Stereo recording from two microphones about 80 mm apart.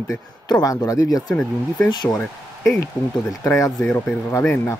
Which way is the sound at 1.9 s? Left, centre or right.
Left.